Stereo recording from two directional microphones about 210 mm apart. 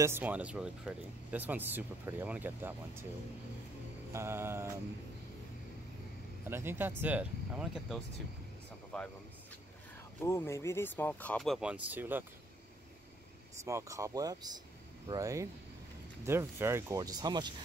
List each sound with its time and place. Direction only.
0.0 s speech: 10° right (ahead or behind)
4.1 s speech: 10° right (ahead or behind)
6.4 s speech: 10° right (ahead or behind)
10.2 s speech: 15° left (ahead or behind); by 12.3 s 10° right (ahead or behind)
13.7 s speech: 15° right (ahead or behind)